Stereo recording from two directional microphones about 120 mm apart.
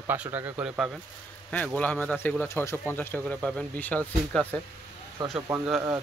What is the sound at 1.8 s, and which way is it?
Speech, 10° left (ahead or behind).